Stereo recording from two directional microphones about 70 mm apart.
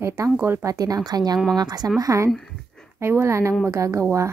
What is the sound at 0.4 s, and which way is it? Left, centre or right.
Speech, right.